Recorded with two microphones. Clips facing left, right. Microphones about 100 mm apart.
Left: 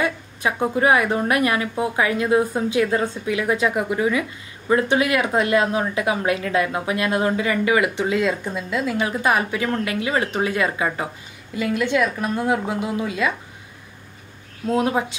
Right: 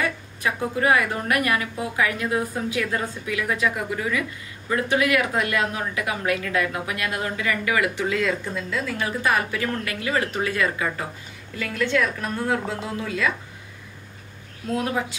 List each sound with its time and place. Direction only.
0.0 s a woman's voice: 20° left (ahead or behind)
14.8 s a woman's voice: 25° left (ahead or behind)